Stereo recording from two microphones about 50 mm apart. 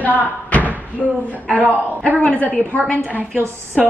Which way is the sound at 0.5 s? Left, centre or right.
Left.